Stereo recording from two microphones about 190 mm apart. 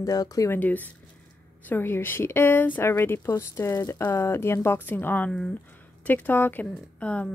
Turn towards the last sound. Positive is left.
turn(degrees=5)  # may be behind; listen again after turning